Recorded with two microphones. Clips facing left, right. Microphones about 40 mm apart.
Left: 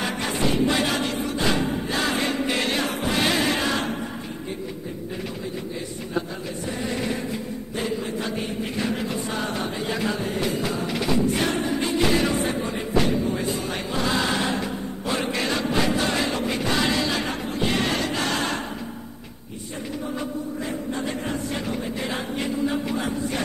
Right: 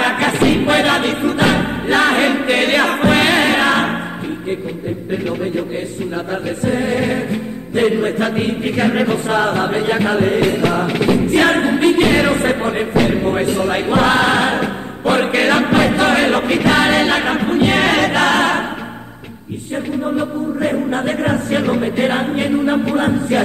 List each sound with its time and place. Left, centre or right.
0.0 s choir: right
6.6 s music: right
20.2 s music: right